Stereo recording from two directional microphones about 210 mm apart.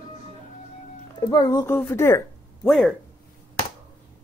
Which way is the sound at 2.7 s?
Centre (ahead or behind).